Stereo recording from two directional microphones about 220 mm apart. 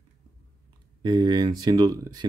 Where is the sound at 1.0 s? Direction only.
20° right (ahead or behind).